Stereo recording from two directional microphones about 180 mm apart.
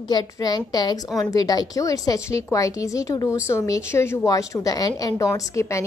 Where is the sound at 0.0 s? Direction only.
25° left (ahead or behind).